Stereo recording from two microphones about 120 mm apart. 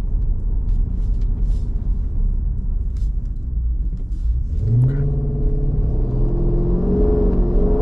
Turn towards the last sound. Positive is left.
turn(degrees=0)  # may be behind; listen again after turning